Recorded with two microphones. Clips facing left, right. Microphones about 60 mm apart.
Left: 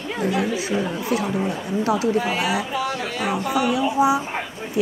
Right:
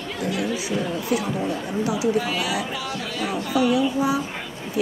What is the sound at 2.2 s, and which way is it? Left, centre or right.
Speech, left.